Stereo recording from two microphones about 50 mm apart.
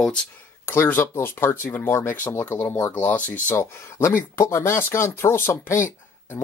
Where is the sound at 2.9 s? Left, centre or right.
Left.